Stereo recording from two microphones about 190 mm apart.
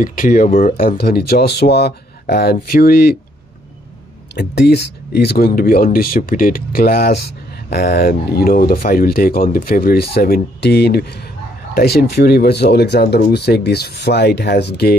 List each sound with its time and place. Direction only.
0.0 s speech: 45° left (ahead or behind)
4.4 s speech: 60° left (ahead or behind)